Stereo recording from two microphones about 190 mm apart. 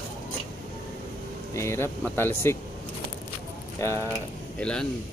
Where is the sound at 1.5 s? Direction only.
15° left (ahead or behind).